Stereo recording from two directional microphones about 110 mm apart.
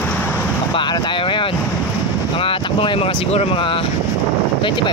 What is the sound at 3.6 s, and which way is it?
Speech, 50° left (ahead or behind).